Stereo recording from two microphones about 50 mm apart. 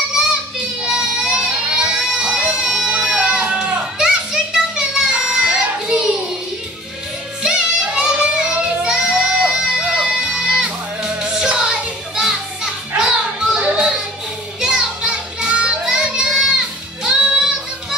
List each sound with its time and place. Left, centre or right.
0.1 s child singing: centre
2.0 s a sound: centre
2.6 s music: centre
5.9 s child singing: centre
7.4 s child singing: centre
14.6 s music: centre